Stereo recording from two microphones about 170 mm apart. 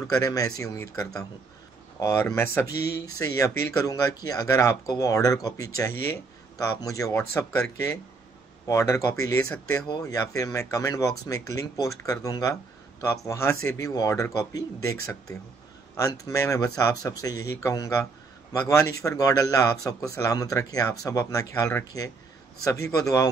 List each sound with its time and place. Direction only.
0.1 s speech: 20° left (ahead or behind)